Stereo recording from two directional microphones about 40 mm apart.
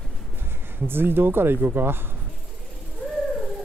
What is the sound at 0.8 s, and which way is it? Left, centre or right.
Speech, right.